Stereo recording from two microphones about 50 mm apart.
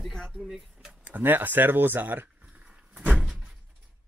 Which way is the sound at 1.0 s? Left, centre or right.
Right.